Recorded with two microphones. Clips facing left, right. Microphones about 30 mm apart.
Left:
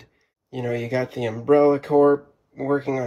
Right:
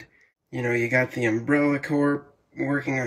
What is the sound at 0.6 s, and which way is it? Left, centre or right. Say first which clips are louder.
Speech: right 2 dB; right.